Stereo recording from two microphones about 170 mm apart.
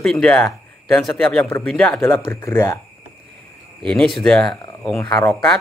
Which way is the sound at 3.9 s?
5° left (ahead or behind).